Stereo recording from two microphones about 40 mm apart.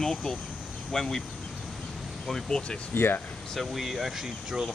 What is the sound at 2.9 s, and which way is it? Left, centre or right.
Speech, left.